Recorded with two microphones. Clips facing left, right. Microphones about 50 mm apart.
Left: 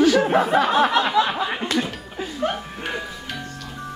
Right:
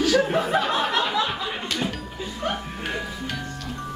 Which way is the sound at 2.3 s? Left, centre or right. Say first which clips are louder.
Left 3 dB; centre.